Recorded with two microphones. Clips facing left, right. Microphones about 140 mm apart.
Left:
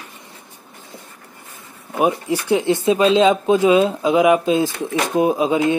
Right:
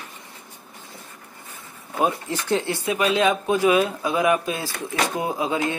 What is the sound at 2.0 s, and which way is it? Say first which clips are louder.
Speech: left 5 dB; 15° left (ahead or behind).